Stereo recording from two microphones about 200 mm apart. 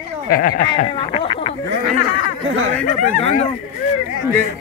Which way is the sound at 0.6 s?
25° left (ahead or behind).